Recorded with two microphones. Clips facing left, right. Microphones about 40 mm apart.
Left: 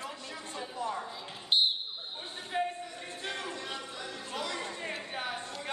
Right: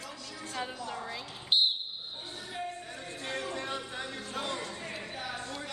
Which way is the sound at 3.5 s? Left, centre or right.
Right.